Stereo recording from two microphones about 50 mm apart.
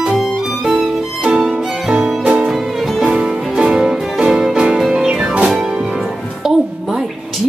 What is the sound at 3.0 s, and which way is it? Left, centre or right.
Music, centre.